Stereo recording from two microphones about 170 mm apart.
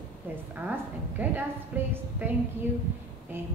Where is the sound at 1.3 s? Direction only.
15° right (ahead or behind).